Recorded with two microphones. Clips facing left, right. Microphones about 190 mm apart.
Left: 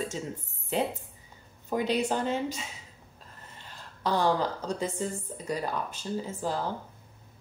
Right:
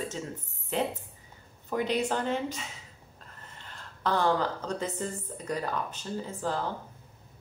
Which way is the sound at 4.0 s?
15° left (ahead or behind).